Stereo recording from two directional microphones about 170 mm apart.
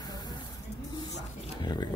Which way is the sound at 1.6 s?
25° left (ahead or behind).